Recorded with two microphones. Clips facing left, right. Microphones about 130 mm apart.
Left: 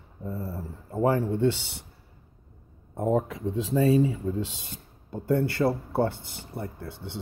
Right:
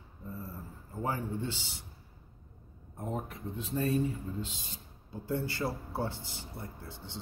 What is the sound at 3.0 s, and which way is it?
Speech, 90° left.